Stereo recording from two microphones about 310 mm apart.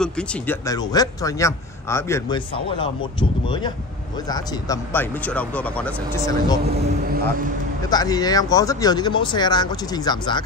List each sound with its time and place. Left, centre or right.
0.0 s a man's voice: centre
6.6 s speech: right
7.9 s a man's voice: centre